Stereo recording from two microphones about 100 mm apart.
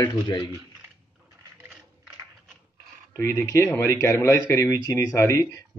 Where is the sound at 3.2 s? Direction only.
30° left (ahead or behind).